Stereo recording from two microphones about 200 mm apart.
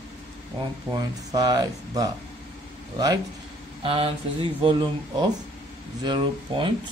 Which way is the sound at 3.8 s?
25° right (ahead or behind).